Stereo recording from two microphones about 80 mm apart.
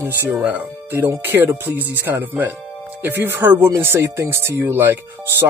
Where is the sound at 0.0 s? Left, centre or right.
Right.